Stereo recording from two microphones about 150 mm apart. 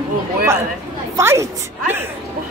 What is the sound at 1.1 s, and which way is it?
Speech, 20° right (ahead or behind).